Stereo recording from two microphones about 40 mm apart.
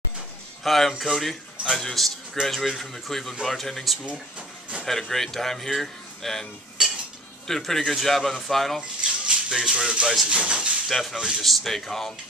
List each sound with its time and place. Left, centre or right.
0.7 s speech: centre
4.4 s a sound: right
4.8 s speech: centre
6.8 s cutlery: centre
7.4 s speech: centre
9.2 s speech: centre
10.9 s speech: centre
11.1 s speech: centre
11.4 s speech: centre